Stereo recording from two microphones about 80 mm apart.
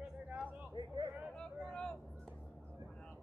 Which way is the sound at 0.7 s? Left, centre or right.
Right.